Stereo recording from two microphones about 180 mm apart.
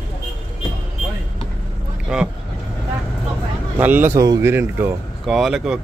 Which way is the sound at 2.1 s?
5° right (ahead or behind).